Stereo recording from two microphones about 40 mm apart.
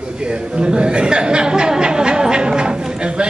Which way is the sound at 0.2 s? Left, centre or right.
Right.